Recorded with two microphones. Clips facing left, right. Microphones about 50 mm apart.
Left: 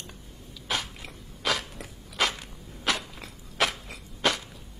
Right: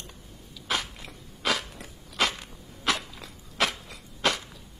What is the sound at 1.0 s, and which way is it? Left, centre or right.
Biting, centre.